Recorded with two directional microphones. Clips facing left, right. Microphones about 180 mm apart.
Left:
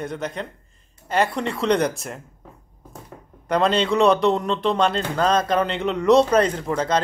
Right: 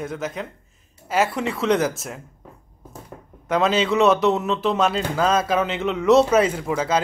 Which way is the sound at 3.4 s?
Centre (ahead or behind).